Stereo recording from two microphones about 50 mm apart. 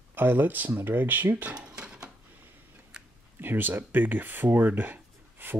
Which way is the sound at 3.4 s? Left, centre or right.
Right.